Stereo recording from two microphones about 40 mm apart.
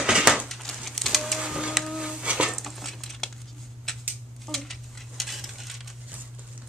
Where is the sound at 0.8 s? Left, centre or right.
Centre.